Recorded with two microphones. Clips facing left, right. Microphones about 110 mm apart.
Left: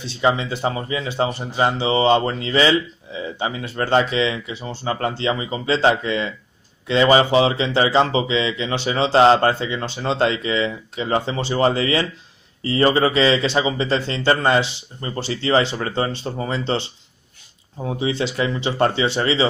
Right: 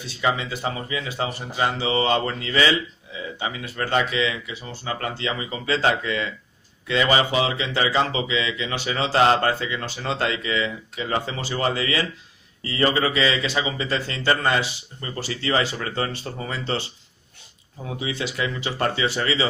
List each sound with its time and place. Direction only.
0.0 s speech: 25° left (ahead or behind)